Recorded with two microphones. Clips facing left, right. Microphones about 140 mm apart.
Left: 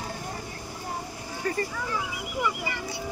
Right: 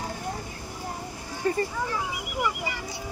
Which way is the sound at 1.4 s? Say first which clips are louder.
Right 4 dB; 30° right (ahead or behind).